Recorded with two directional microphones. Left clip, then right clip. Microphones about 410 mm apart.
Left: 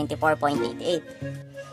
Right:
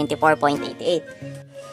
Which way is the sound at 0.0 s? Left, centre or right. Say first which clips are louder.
Right 5 dB; left.